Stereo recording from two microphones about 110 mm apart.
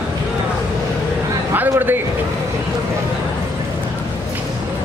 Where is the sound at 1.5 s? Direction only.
20° right (ahead or behind).